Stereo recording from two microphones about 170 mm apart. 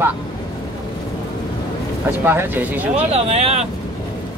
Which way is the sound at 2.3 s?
10° right (ahead or behind).